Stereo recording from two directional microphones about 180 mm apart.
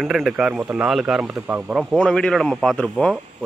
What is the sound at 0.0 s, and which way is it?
A man's voice, centre (ahead or behind).